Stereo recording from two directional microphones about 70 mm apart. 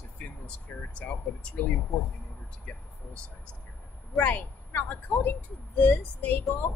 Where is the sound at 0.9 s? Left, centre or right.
Centre.